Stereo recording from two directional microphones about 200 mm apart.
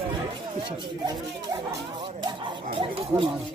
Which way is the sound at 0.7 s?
20° right (ahead or behind).